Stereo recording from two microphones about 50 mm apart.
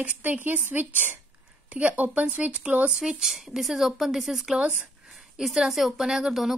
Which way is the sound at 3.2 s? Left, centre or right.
Centre.